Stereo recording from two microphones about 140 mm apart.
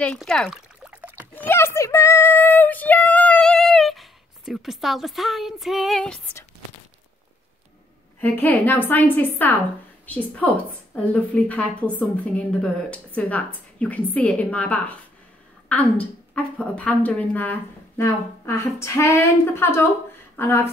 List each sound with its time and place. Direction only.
0.0 s speech: 5° left (ahead or behind)
1.3 s speech: 15° left (ahead or behind)
8.2 s a woman's voice: 15° left (ahead or behind)